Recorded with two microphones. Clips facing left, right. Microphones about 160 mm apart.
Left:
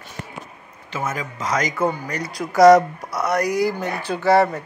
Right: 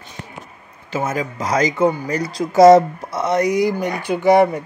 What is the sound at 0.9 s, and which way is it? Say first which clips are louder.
Speech: right 5 dB; 35° right (ahead or behind).